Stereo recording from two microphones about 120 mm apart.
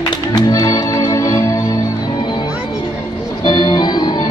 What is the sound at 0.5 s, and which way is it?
Music, 30° left (ahead or behind).